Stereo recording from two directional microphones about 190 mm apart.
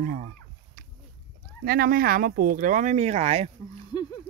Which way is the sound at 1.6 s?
50° right (ahead or behind).